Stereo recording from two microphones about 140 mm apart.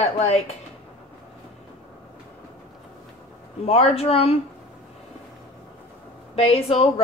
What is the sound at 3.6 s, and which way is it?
Speech, 45° left (ahead or behind).